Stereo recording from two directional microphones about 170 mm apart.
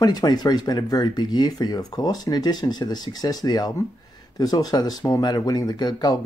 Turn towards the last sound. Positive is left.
turn(degrees=25)  # may be behind; listen again after turning